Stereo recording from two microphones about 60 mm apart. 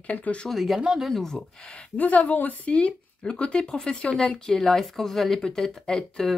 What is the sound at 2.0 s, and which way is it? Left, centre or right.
Speech, left.